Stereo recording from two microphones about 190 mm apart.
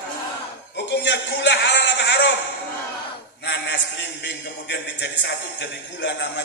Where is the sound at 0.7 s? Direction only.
65° left (ahead or behind).